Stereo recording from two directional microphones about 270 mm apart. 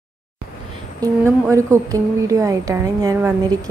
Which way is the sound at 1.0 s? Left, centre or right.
Centre.